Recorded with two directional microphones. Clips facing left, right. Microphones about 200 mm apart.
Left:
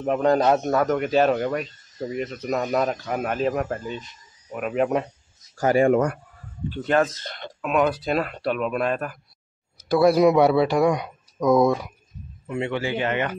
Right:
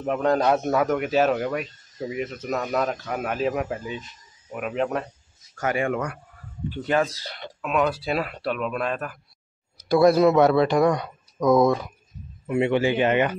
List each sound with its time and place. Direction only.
0.0 s a man's voice: centre (ahead or behind)
5.6 s speech: 35° left (ahead or behind)
6.7 s speech: 10° right (ahead or behind)
7.6 s a man's voice: 5° left (ahead or behind)
12.4 s speech: 15° right (ahead or behind)